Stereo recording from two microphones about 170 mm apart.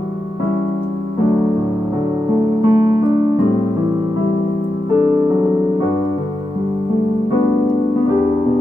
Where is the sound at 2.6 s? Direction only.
15° right (ahead or behind).